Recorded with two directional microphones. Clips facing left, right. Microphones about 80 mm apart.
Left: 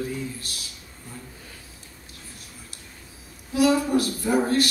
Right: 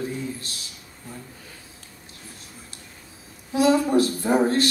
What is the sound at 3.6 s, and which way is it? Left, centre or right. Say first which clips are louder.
Speech: right 2 dB; right.